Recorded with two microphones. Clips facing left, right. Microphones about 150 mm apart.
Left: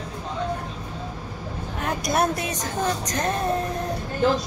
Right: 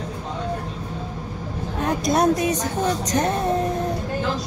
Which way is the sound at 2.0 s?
20° right (ahead or behind).